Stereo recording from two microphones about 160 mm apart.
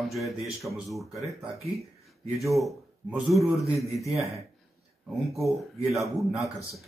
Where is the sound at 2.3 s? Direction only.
Centre (ahead or behind).